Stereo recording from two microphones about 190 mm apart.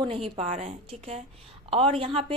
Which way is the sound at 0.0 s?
30° right (ahead or behind).